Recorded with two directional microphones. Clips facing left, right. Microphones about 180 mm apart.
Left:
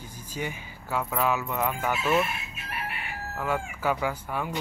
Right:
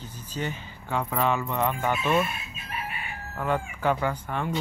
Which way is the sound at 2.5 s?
70° left (ahead or behind).